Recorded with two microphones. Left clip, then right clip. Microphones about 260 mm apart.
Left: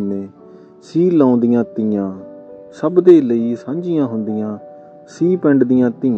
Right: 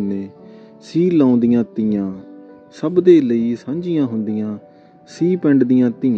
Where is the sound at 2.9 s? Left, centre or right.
Right.